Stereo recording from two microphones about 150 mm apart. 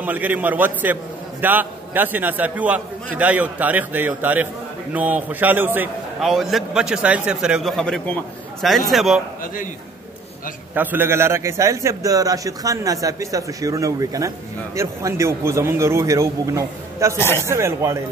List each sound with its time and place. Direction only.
0.0 s a man's voice: 10° right (ahead or behind)
6.2 s a man's voice: centre (ahead or behind)
10.7 s a man's voice: 10° right (ahead or behind)
17.2 s a man's voice: 15° left (ahead or behind)
17.5 s a man's voice: 20° right (ahead or behind)